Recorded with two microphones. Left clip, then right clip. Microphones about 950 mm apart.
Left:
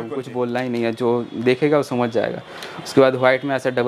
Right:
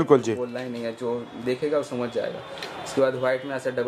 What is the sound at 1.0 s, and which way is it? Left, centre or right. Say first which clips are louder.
Speech: left 10 dB; left.